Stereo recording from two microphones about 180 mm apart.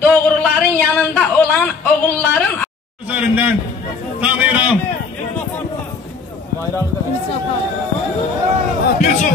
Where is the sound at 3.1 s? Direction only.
10° right (ahead or behind).